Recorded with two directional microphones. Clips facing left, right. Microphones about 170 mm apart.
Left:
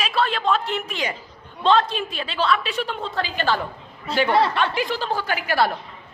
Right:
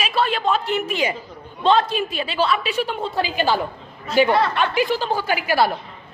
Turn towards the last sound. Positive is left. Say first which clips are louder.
# right 2 dB
turn(degrees=-5)  # may be behind; listen again after turning